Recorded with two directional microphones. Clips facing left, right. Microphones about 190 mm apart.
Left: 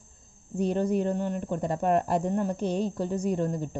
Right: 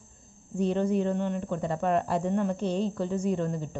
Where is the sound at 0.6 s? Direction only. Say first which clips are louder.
Even; 45° left (ahead or behind).